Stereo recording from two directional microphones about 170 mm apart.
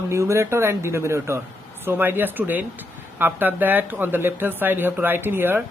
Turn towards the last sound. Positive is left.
turn(degrees=-10)  # may be behind; listen again after turning